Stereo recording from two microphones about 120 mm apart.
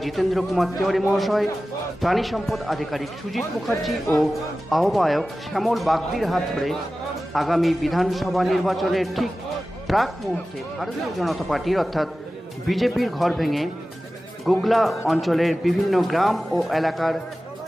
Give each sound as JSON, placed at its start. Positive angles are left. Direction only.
{"t": 0.0, "sound": "a man's voice", "side_deg": 0}